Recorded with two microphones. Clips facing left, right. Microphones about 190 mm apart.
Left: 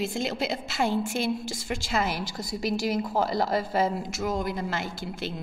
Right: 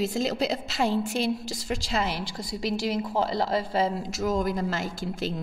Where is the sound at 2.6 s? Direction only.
30° right (ahead or behind).